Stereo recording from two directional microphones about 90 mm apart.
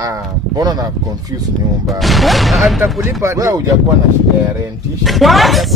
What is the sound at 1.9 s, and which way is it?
Speech, centre (ahead or behind).